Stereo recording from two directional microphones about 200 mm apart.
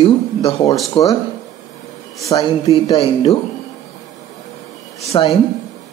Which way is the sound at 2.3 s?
20° left (ahead or behind).